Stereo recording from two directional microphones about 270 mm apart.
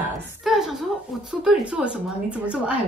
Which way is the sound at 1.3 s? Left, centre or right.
Centre.